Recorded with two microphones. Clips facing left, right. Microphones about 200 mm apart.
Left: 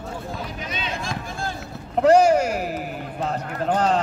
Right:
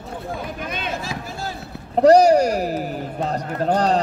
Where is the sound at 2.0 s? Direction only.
40° right (ahead or behind).